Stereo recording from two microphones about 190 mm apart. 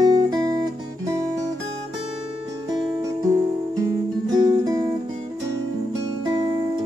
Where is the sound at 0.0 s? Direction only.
20° right (ahead or behind).